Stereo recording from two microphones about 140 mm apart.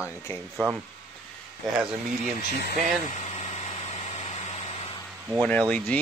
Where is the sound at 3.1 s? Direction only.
55° left (ahead or behind).